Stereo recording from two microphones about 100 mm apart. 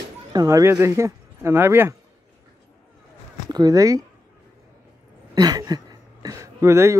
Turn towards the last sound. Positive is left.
turn(degrees=-25)  # may be behind; listen again after turning